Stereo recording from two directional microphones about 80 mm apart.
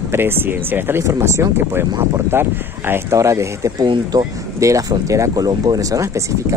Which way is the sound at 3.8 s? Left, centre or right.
Right.